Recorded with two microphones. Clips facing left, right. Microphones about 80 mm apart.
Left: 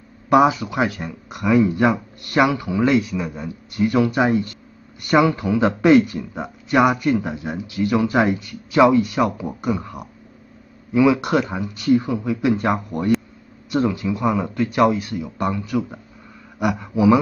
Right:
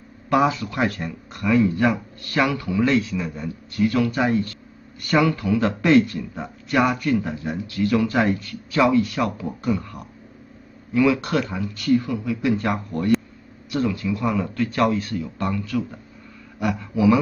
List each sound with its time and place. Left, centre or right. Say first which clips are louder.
0.3 s speech: left 4 dB; centre